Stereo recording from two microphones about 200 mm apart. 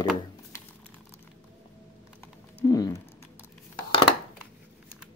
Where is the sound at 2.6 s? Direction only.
20° left (ahead or behind).